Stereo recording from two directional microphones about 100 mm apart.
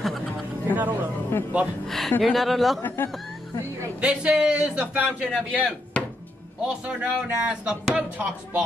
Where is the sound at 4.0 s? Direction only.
10° right (ahead or behind).